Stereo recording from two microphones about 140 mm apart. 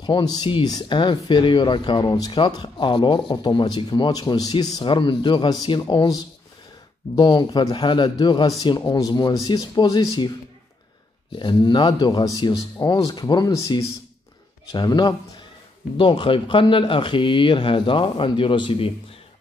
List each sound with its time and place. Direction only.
0.0 s speech: 30° left (ahead or behind)
11.3 s speech: 35° left (ahead or behind)